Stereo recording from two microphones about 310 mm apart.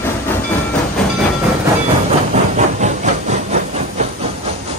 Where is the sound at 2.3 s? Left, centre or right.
Right.